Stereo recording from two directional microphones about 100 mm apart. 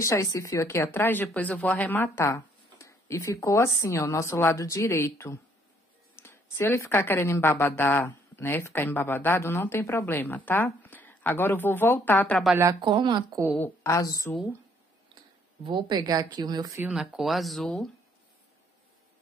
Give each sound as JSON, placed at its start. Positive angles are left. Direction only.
{"t": 0.0, "sound": "a woman's voice", "side_deg": 30}
{"t": 12.8, "sound": "speech", "side_deg": -55}
{"t": 13.8, "sound": "a woman's voice", "side_deg": 35}
{"t": 15.6, "sound": "a woman's voice", "side_deg": -55}
{"t": 16.1, "sound": "a woman's voice", "side_deg": -40}
{"t": 16.8, "sound": "speech", "side_deg": -5}